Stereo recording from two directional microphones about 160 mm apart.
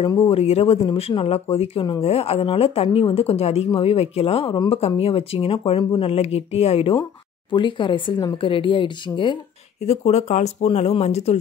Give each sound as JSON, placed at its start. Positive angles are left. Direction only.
{"t": 0.2, "sound": "speech", "side_deg": 40}
{"t": 9.8, "sound": "speech", "side_deg": 45}